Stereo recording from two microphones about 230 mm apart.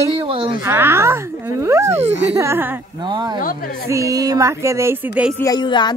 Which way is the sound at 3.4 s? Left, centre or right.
Left.